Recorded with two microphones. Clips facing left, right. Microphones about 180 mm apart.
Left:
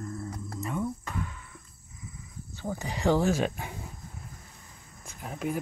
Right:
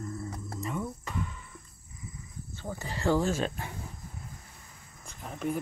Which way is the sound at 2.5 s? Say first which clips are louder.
Left 4 dB; 15° left (ahead or behind).